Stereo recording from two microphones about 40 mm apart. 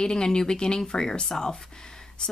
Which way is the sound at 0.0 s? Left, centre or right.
Centre.